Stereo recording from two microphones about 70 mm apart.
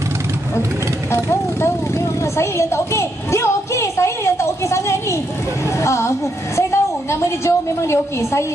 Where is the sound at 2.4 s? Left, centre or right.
Left.